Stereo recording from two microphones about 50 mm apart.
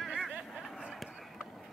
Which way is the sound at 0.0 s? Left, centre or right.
Centre.